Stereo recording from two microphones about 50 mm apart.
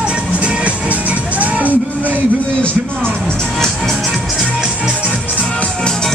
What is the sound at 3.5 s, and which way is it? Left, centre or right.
Music, centre.